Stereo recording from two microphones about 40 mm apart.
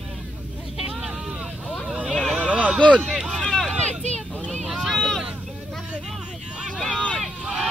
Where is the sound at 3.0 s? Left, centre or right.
Centre.